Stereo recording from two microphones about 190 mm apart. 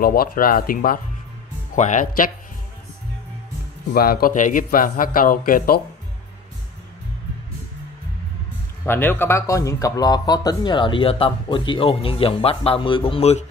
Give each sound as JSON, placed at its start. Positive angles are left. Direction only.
{"t": 0.0, "sound": "a man's voice", "side_deg": 50}
{"t": 3.9, "sound": "a man's voice", "side_deg": 50}
{"t": 8.8, "sound": "speech", "side_deg": 10}